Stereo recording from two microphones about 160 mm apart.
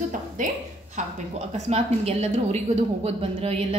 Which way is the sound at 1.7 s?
40° right (ahead or behind).